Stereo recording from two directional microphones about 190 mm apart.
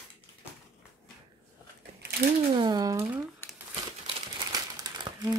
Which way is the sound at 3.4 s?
10° left (ahead or behind).